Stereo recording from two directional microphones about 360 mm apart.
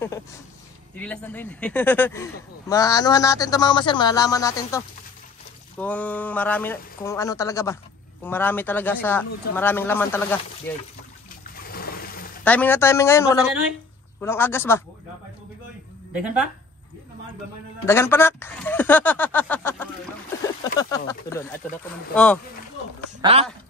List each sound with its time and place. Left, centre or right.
0.9 s speech: centre
11.6 s water: left
12.4 s speech: centre
17.8 s speech: centre
20.9 s speech: centre
23.2 s speech: centre